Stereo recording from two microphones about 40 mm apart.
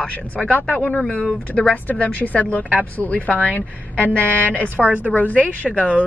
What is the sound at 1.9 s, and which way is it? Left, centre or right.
A woman's voice, left.